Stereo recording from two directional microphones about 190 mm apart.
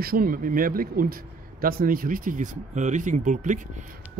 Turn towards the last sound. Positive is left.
turn(degrees=-40)  # may be behind; listen again after turning